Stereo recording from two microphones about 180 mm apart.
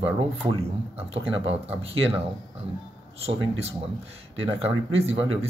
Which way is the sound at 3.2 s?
35° right (ahead or behind).